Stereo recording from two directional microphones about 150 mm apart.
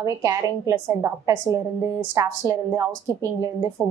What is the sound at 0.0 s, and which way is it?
A woman's voice, 20° right (ahead or behind).